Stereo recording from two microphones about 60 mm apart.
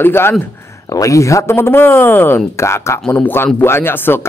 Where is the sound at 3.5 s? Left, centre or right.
Left.